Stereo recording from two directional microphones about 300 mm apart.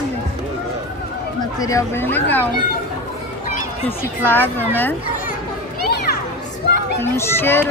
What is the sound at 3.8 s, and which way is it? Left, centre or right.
Speech, centre.